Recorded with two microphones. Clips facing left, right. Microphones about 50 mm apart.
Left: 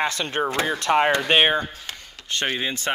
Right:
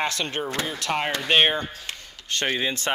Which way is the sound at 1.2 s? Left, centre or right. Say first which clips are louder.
Left 2 dB; centre.